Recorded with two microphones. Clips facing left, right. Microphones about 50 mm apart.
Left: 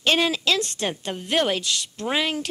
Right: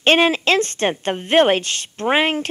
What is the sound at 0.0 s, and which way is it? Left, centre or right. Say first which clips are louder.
Speech: right 6 dB; right.